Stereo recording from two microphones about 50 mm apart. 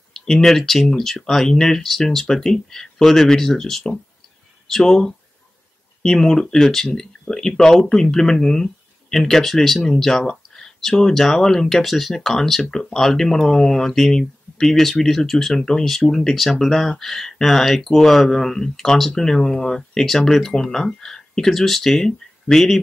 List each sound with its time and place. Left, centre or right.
0.1 s speech: centre